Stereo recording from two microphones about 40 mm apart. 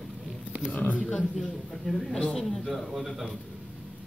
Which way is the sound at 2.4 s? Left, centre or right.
Centre.